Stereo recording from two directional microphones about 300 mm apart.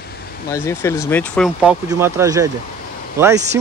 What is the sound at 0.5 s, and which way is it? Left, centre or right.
Speech, centre.